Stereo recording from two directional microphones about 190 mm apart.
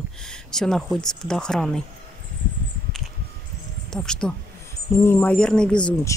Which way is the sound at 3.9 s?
5° left (ahead or behind).